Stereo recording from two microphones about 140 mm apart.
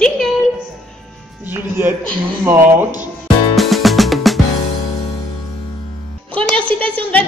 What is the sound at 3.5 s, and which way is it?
Music, centre (ahead or behind).